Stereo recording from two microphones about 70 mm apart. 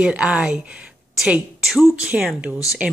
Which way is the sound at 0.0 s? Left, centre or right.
Centre.